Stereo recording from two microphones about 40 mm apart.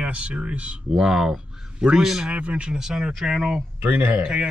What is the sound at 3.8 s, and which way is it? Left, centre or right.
Speech, right.